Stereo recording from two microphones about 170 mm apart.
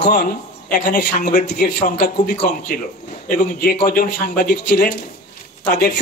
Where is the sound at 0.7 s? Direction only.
70° left (ahead or behind).